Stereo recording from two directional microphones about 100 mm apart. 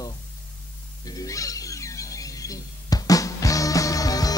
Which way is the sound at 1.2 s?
35° left (ahead or behind).